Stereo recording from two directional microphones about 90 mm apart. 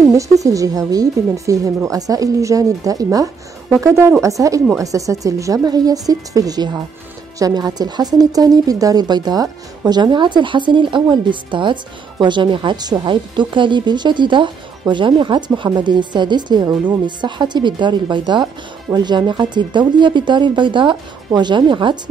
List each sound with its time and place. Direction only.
0.1 s a woman's voice: 35° right (ahead or behind); by 21.9 s 60° right (ahead or behind)